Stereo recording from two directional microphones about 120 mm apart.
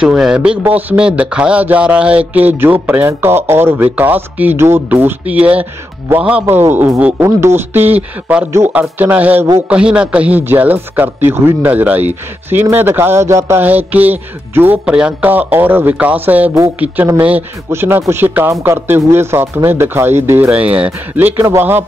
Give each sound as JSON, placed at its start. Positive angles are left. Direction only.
{"t": 0.0, "sound": "a man's voice", "side_deg": -5}